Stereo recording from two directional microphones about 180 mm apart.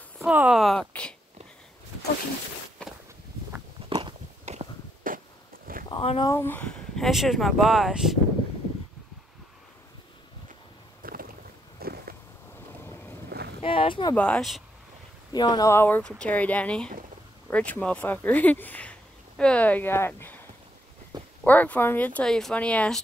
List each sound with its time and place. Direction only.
0.2 s speech: 5° right (ahead or behind)
2.8 s walk: 5° left (ahead or behind)
4.5 s walk: 45° right (ahead or behind)
5.9 s speech: 30° left (ahead or behind)
6.3 s speech: 10° left (ahead or behind)
11.0 s boat: 55° right (ahead or behind)
11.8 s biting: 55° right (ahead or behind)
13.6 s a sound: 30° left (ahead or behind)
14.1 s speech: 5° left (ahead or behind)
15.3 s speech: 25° left (ahead or behind)
21.1 s a sound: 25° right (ahead or behind)
21.5 s speech: 10° left (ahead or behind)